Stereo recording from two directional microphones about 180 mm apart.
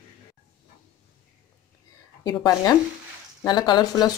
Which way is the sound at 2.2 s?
20° left (ahead or behind).